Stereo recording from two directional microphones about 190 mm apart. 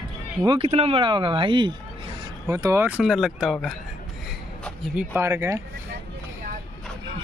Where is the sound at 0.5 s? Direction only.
30° right (ahead or behind); by 3.5 s centre (ahead or behind).